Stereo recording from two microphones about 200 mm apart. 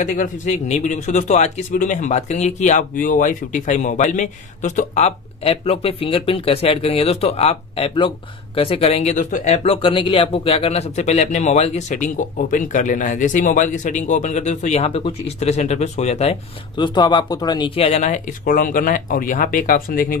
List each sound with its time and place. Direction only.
0.0 s speech: 40° left (ahead or behind)